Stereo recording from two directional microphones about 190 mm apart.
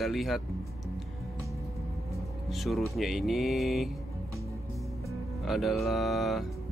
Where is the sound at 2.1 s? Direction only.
Centre (ahead or behind).